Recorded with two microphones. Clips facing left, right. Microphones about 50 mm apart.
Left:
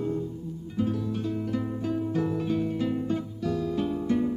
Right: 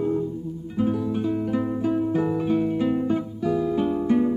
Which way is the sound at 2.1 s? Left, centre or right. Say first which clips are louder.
Right 5 dB; centre.